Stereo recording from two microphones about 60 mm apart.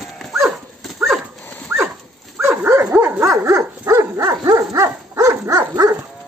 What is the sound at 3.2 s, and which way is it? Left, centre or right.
Dog, right.